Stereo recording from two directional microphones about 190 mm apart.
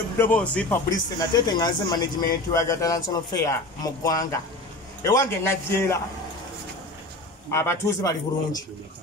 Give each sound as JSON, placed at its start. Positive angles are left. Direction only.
{"t": 0.2, "sound": "a man's voice", "side_deg": 10}
{"t": 0.8, "sound": "a man's voice", "side_deg": 20}
{"t": 7.5, "sound": "a man's voice", "side_deg": 15}